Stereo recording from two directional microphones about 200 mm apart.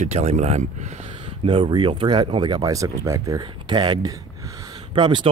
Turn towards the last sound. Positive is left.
turn(degrees=-25)  # may be behind; listen again after turning